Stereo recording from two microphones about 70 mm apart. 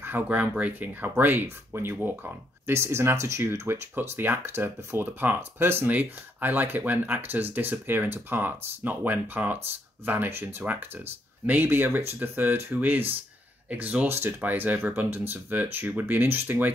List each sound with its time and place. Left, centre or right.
0.3 s speech: right
3.9 s speech: right
14.0 s speech: right